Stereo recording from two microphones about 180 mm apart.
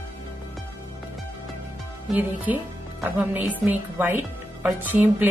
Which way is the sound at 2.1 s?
10° right (ahead or behind).